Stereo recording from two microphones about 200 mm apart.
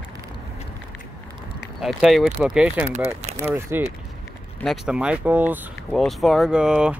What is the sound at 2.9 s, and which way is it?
Speech, 35° right (ahead or behind).